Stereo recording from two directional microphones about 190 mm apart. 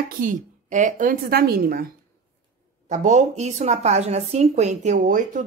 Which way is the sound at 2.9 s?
40° right (ahead or behind).